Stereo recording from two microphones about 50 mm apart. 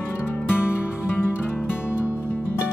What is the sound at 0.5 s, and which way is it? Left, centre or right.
Music, left.